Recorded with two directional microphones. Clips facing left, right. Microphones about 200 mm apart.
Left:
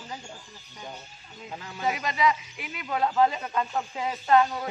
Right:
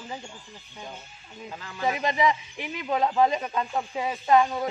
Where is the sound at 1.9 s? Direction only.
20° right (ahead or behind).